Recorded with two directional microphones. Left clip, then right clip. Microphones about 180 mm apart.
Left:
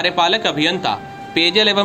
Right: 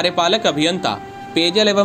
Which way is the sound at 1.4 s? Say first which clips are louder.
Left 1 dB; 30° right (ahead or behind).